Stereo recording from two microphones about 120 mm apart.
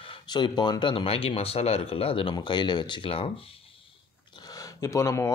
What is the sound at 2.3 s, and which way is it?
Speech, 40° left (ahead or behind).